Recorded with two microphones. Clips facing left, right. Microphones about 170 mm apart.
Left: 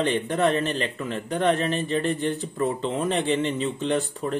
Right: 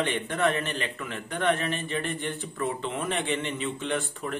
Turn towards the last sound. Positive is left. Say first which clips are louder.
# left 5 dB
turn(degrees=35)  # may be behind; listen again after turning